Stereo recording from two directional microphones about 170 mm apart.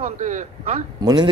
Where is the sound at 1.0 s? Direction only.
25° right (ahead or behind).